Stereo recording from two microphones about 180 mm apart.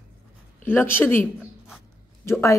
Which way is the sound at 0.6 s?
10° left (ahead or behind).